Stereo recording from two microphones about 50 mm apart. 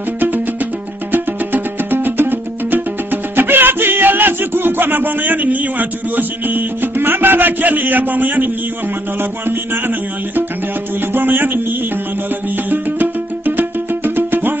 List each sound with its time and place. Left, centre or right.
0.2 s music: right